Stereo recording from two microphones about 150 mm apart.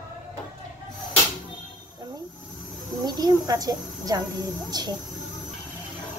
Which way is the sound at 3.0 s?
25° right (ahead or behind).